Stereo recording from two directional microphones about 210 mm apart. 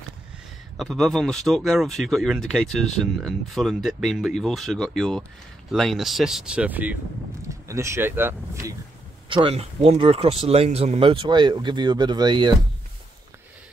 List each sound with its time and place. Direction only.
0.7 s speech: centre (ahead or behind)
9.3 s speech: 25° right (ahead or behind)